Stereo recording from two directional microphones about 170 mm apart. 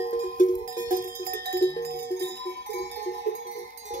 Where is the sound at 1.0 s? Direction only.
60° right (ahead or behind).